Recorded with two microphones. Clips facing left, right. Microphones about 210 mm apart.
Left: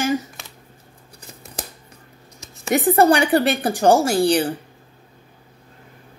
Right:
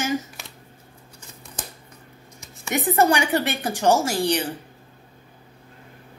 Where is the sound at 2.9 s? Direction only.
35° left (ahead or behind).